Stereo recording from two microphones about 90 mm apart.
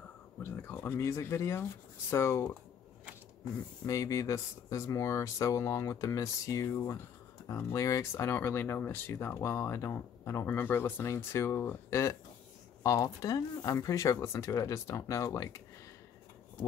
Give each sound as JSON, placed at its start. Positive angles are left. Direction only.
{"t": 0.4, "sound": "speech", "side_deg": 25}
{"t": 3.8, "sound": "speech", "side_deg": 40}